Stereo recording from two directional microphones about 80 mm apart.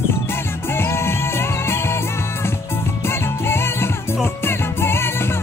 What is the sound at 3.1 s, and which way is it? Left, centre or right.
Music, left.